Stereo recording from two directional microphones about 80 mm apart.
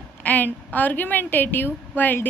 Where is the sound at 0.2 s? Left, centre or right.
Left.